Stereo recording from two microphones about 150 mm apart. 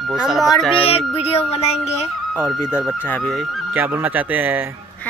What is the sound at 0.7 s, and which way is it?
Music, 40° left (ahead or behind).